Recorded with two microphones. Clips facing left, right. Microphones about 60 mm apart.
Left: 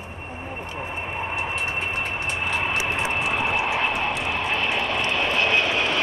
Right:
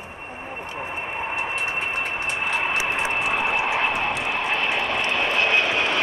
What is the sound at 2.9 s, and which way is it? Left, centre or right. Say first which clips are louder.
Vehicle: right 1 dB; right.